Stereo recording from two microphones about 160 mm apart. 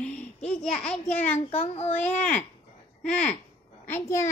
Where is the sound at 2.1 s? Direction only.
50° left (ahead or behind).